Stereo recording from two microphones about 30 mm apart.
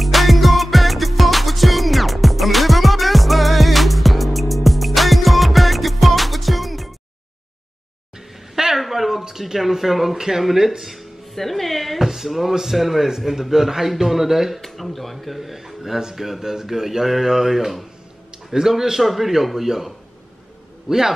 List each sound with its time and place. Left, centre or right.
0.0 s music: centre
8.7 s a sound: centre
9.4 s a man's voice: centre
11.3 s speech: centre
12.0 s a man's voice: centre
12.3 s a man's voice: centre
14.6 s a man's voice: centre